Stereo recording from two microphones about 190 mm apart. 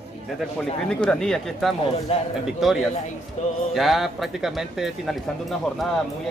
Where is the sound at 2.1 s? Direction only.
30° left (ahead or behind).